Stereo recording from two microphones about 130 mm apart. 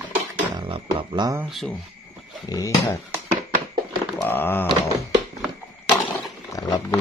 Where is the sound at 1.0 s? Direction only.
35° right (ahead or behind).